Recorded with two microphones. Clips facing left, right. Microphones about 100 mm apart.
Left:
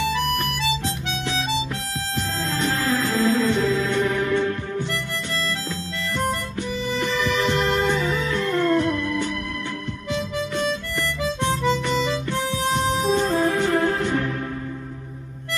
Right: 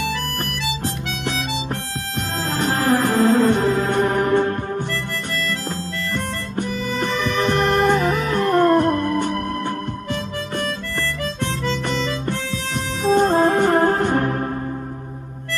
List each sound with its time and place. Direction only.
2.5 s music: 45° right (ahead or behind)
6.6 s music: 45° right (ahead or behind)
11.1 s harmonica: 15° left (ahead or behind)
12.4 s music: 20° left (ahead or behind)
13.1 s music: 45° right (ahead or behind)